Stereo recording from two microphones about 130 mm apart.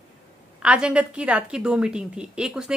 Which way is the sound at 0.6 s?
5° right (ahead or behind).